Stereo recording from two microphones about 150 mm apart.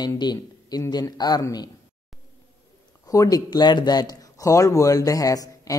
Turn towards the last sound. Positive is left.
turn(degrees=25)  # may be behind; listen again after turning